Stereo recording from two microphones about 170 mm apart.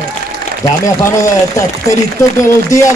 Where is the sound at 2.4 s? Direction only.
20° left (ahead or behind).